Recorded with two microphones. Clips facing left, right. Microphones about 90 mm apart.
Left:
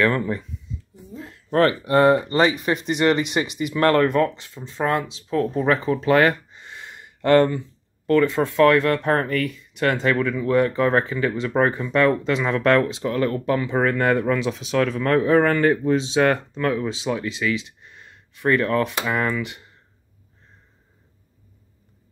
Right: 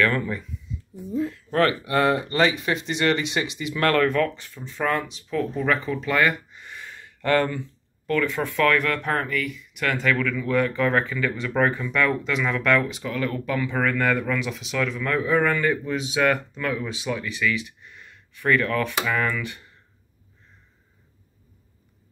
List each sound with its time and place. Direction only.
0.0 s speech: 25° left (ahead or behind)
6.6 s a sound: 25° left (ahead or behind)
8.1 s speech: 25° left (ahead or behind)